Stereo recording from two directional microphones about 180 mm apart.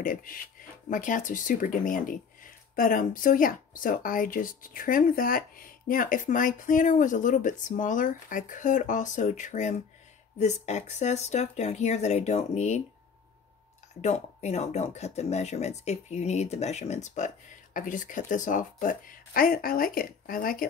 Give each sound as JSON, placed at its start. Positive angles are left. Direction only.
{"t": 0.0, "sound": "speech", "side_deg": 50}
{"t": 14.0, "sound": "speech", "side_deg": 40}